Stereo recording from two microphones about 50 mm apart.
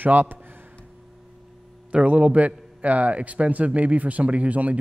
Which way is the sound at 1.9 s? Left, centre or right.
Right.